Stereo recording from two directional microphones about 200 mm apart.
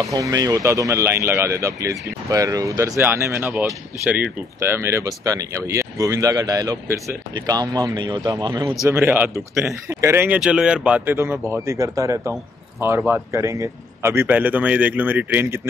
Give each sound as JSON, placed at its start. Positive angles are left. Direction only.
{"t": 0.0, "sound": "speech", "side_deg": -15}